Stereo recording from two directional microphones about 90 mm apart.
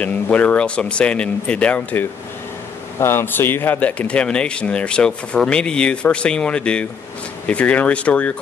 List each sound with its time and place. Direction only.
0.0 s speech: 15° left (ahead or behind)
3.0 s speech: 30° left (ahead or behind)